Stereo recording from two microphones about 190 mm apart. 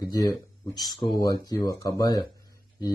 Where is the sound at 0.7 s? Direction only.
20° left (ahead or behind).